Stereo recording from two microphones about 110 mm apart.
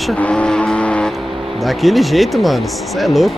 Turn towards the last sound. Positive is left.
turn(degrees=0)  # may be behind; listen again after turning